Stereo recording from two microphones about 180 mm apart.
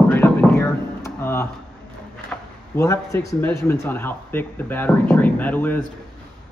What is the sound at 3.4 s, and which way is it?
Speech, 15° left (ahead or behind).